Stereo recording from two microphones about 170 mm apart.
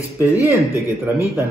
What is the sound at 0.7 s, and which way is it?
Speech, 15° right (ahead or behind).